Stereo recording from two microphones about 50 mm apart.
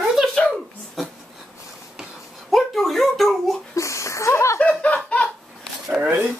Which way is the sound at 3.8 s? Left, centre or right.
Left.